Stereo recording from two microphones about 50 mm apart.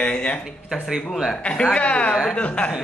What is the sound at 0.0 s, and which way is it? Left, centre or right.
Speech, left.